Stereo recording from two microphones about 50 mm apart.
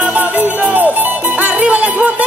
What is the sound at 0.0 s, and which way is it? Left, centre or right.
Music, right.